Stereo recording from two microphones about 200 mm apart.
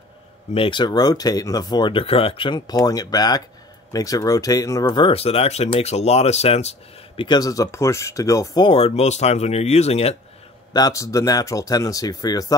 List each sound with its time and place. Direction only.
0.6 s speech: 25° left (ahead or behind)
10.7 s speech: 20° left (ahead or behind)